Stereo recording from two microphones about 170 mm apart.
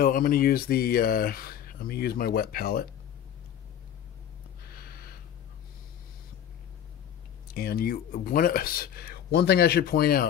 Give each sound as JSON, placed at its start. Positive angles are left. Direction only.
{"t": 0.0, "sound": "speech", "side_deg": 60}
{"t": 7.5, "sound": "speech", "side_deg": 60}